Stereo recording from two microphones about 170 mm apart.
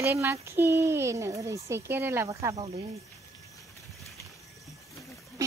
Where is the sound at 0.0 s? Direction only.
15° right (ahead or behind).